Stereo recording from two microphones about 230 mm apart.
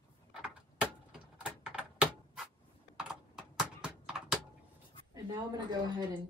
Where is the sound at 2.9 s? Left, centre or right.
Centre.